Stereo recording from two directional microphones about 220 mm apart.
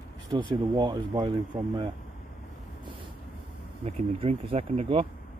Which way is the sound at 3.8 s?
25° right (ahead or behind).